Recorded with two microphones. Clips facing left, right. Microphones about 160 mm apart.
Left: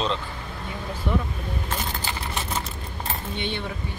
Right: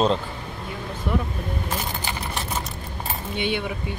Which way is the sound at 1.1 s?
5° right (ahead or behind).